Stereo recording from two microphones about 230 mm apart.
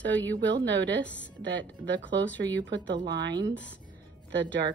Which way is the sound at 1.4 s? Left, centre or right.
Right.